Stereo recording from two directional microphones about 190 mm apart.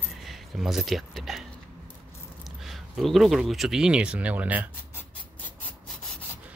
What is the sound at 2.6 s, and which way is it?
Speech, centre (ahead or behind).